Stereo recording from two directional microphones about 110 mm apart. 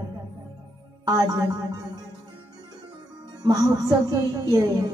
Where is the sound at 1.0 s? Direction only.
35° right (ahead or behind).